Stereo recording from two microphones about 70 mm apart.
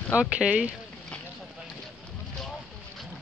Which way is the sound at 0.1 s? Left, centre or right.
Centre.